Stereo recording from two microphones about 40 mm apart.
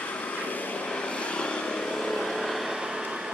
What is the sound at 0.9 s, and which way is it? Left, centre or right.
Vehicle, left.